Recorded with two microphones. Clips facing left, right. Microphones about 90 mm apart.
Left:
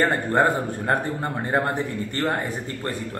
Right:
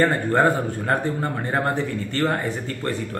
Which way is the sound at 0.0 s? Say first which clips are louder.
Right 2 dB; 20° left (ahead or behind).